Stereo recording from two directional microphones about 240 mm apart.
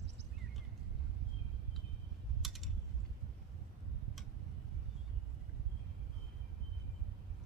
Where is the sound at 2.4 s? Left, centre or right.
Centre.